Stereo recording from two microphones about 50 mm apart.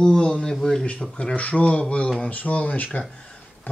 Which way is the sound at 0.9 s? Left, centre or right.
Left.